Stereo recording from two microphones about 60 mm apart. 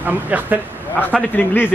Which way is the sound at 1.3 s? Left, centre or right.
Left.